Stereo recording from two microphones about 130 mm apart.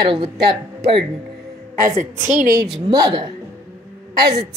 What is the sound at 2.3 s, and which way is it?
Speech, 90° right.